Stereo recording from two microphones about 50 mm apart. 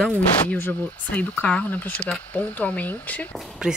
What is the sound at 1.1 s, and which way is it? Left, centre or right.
Speech, left.